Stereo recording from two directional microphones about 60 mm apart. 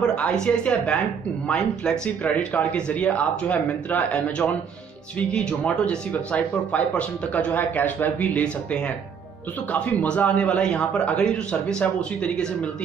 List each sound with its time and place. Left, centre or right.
0.0 s speech: centre